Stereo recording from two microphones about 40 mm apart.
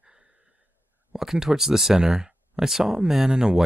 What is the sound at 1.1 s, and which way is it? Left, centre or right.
Speech, centre.